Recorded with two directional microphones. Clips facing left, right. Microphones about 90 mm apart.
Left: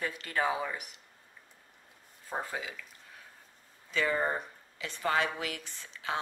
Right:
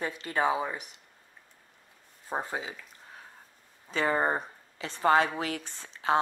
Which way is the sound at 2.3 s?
30° right (ahead or behind).